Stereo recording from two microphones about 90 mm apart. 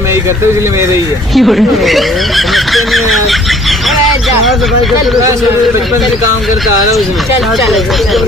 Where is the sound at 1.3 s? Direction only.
Centre (ahead or behind).